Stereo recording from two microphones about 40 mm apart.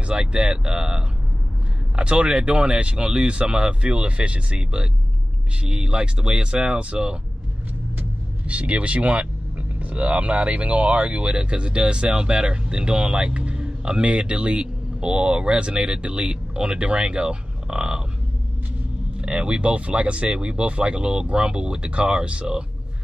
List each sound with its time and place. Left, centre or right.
0.0 s speech: right
8.5 s speech: right
11.3 s speech: right
19.2 s speech: right